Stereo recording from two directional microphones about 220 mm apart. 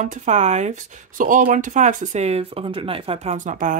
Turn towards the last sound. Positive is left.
turn(degrees=-35)  # may be behind; listen again after turning